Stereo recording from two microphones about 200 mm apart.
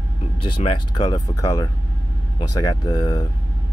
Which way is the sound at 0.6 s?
20° left (ahead or behind).